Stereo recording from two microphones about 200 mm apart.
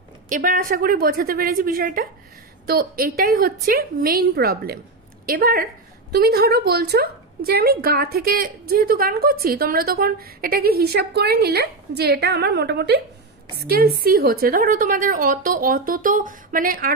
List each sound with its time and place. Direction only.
0.3 s a woman's voice: 40° right (ahead or behind)